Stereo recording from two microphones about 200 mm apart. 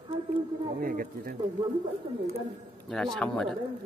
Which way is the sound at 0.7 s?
45° right (ahead or behind).